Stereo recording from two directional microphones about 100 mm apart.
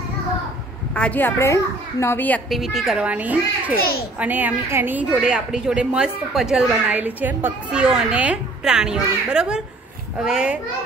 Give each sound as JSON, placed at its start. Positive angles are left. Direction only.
{"t": 0.9, "sound": "a child's voice", "side_deg": 15}
{"t": 2.5, "sound": "a woman's voice", "side_deg": 0}
{"t": 3.1, "sound": "a woman's voice", "side_deg": -15}
{"t": 5.2, "sound": "a woman's voice", "side_deg": -5}